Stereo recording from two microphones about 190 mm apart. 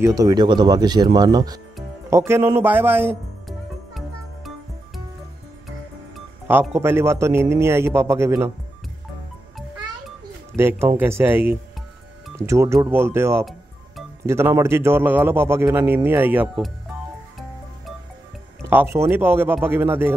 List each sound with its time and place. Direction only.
0.0 s a man's voice: 20° right (ahead or behind)
6.7 s a man's voice: 10° right (ahead or behind)
10.5 s a man's voice: 10° right (ahead or behind)
18.6 s music: 10° right (ahead or behind)
18.9 s a man's voice: 10° right (ahead or behind)